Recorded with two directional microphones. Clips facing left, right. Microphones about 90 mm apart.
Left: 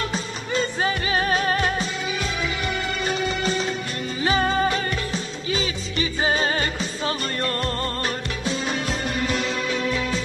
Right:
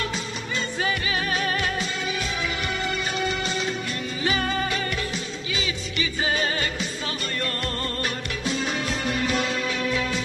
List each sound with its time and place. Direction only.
0.1 s music: 35° left (ahead or behind)
4.2 s music: 30° left (ahead or behind)